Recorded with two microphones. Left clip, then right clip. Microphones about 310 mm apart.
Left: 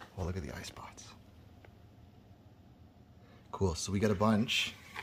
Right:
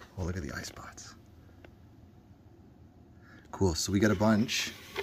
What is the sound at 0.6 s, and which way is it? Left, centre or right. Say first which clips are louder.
Speech: right 3 dB; centre.